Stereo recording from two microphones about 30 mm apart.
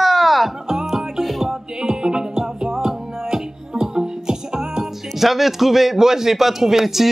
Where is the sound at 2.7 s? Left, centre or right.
Centre.